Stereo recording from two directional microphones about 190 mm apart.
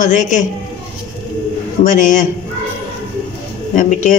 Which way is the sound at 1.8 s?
40° left (ahead or behind).